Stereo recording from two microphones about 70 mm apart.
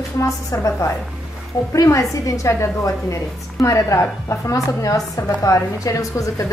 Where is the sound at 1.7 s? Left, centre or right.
Left.